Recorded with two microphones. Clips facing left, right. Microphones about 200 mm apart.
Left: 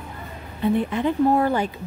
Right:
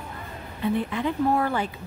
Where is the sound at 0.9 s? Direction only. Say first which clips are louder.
Left 5 dB; 25° left (ahead or behind).